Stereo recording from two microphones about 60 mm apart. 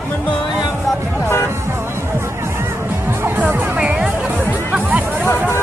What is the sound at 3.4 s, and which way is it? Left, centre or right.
Speech, right.